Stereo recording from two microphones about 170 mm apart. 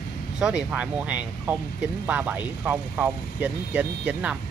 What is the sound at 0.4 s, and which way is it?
Speech, 5° right (ahead or behind).